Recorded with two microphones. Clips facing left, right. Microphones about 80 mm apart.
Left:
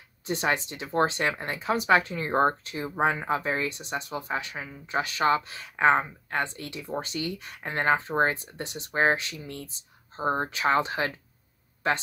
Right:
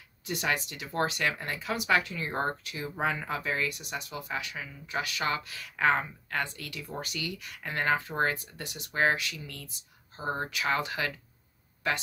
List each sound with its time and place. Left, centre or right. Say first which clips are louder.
0.2 s speech: left 4 dB; left